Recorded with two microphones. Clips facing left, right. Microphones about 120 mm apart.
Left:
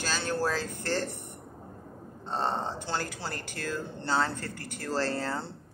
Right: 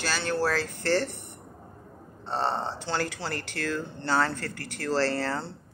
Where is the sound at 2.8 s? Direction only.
70° right (ahead or behind).